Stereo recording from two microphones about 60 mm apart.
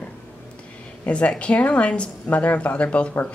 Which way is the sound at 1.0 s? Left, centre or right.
Left.